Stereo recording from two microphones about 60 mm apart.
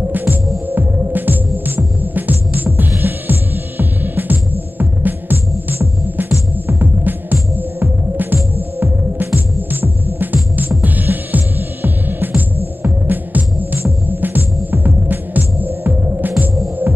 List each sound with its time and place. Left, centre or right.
0.1 s throbbing: right
2.1 s music: right
14.0 s throbbing: right